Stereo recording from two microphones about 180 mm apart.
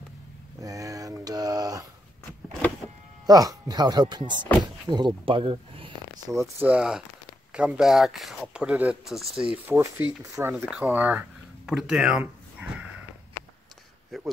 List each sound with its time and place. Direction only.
0.6 s dog: 20° right (ahead or behind)
3.3 s speech: 20° right (ahead or behind)
6.4 s speech: 5° right (ahead or behind)
9.5 s speech: 15° right (ahead or behind)
10.5 s a sound: centre (ahead or behind)
14.1 s a sound: centre (ahead or behind)